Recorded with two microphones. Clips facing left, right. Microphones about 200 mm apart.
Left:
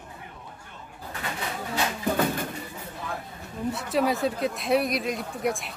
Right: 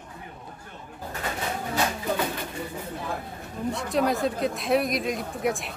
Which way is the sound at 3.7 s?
5° left (ahead or behind).